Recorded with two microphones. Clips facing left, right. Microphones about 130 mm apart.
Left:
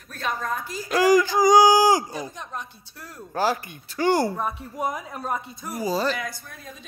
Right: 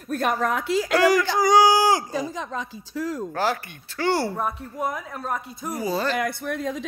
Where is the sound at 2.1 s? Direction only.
90° right.